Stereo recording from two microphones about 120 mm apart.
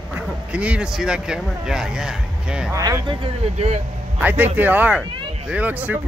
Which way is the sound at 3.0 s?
50° right (ahead or behind).